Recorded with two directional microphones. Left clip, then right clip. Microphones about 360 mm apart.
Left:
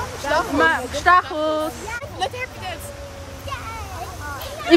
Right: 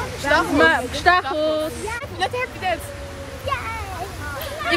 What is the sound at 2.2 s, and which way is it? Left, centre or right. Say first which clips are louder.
Speech: right 2 dB; centre.